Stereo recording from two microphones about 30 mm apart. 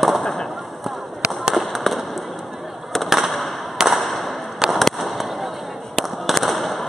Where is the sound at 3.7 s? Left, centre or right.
Centre.